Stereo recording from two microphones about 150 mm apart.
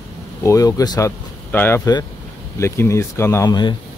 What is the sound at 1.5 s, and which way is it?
Speech, 10° left (ahead or behind).